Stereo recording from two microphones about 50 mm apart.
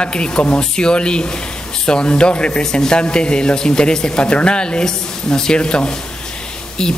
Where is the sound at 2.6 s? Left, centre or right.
Centre.